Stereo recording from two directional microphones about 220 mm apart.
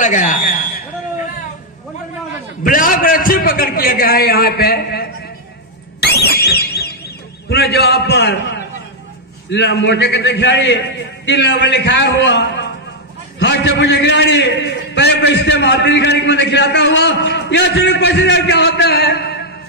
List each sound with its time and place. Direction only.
0.0 s a man's voice: 35° left (ahead or behind)
2.6 s a man's voice: 40° left (ahead or behind)
5.9 s alarm: 45° left (ahead or behind)
7.4 s a man's voice: 45° left (ahead or behind)